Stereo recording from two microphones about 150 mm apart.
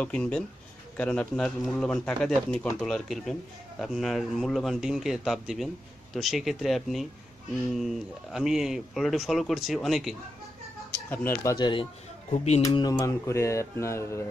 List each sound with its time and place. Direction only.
0.0 s speech: 5° left (ahead or behind)
11.1 s speech: 15° left (ahead or behind)
11.5 s speech: 30° left (ahead or behind)
12.3 s speech: 45° left (ahead or behind)
12.7 s music: 25° left (ahead or behind)